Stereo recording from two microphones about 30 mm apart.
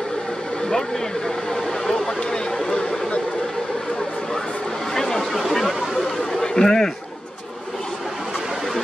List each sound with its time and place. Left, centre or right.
4.9 s a sound: centre
5.3 s chatter: centre
6.5 s a man's voice: centre